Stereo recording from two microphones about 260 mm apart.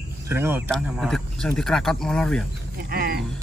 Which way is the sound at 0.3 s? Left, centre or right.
Centre.